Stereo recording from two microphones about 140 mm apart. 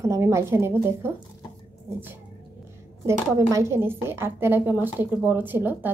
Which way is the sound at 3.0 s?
20° right (ahead or behind).